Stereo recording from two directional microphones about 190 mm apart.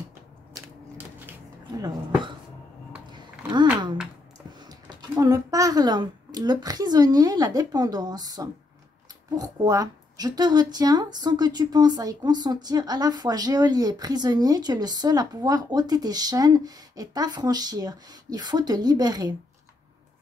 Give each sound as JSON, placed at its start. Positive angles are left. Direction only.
{"t": 0.6, "sound": "biting", "side_deg": -10}
{"t": 1.8, "sound": "speech", "side_deg": -20}
{"t": 3.1, "sound": "a sound", "side_deg": -25}
{"t": 4.6, "sound": "speech", "side_deg": -20}